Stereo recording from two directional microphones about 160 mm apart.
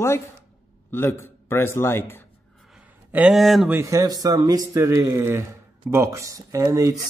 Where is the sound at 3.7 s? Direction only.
20° right (ahead or behind).